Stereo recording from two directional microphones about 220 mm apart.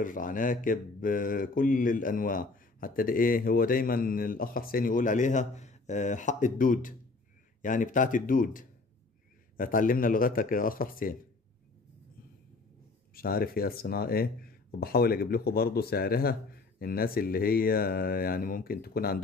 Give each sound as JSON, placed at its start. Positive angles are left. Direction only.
{"t": 0.0, "sound": "speech", "side_deg": 35}
{"t": 13.1, "sound": "speech", "side_deg": 40}